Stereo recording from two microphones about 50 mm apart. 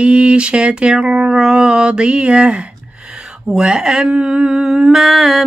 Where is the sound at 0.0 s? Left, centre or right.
Right.